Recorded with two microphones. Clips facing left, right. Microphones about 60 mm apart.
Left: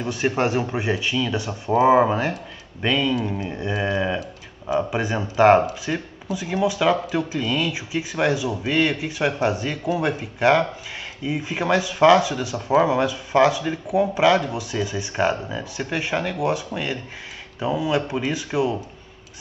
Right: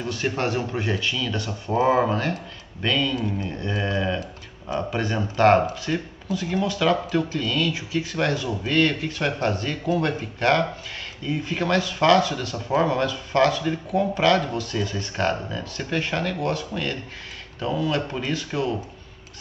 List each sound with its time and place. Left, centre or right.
0.0 s speech: centre